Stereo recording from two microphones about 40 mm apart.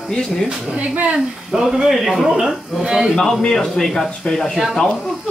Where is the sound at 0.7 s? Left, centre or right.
Right.